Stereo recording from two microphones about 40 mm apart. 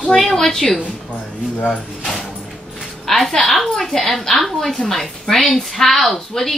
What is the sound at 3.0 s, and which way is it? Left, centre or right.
A woman's voice, centre.